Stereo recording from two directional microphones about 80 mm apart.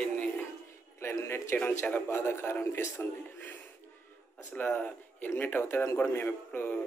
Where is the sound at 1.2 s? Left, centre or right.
Left.